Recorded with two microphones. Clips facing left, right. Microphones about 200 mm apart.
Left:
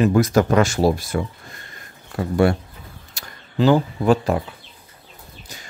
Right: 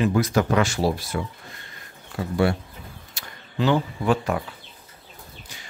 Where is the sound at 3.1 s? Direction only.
40° left (ahead or behind).